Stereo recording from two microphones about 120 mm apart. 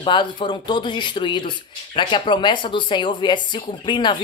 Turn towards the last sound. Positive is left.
turn(degrees=40)  # may be behind; listen again after turning